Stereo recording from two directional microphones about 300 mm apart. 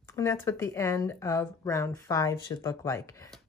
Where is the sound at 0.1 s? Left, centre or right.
Centre.